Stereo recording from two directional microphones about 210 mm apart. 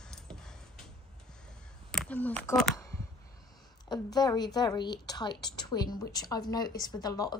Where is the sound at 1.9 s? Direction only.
5° left (ahead or behind).